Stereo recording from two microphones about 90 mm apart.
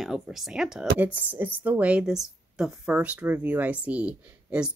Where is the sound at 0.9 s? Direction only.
20° right (ahead or behind).